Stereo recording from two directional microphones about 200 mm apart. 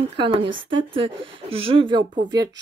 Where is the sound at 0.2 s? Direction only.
25° right (ahead or behind).